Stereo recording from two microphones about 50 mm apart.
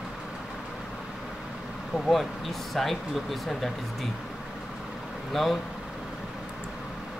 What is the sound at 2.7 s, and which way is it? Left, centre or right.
Speech, centre.